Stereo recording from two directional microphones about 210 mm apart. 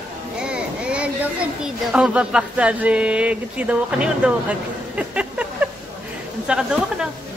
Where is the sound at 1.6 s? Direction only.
5° right (ahead or behind).